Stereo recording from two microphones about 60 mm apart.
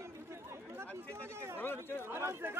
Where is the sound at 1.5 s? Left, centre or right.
Left.